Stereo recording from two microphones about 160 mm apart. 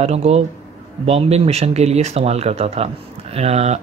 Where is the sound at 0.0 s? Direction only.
40° right (ahead or behind).